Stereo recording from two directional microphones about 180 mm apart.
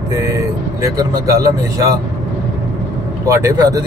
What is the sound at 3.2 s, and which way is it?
Speech, 20° right (ahead or behind).